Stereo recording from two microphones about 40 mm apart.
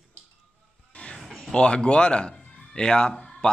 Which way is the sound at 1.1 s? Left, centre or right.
Centre.